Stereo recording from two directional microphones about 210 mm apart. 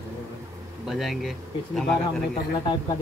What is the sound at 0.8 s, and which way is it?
Speech, centre (ahead or behind).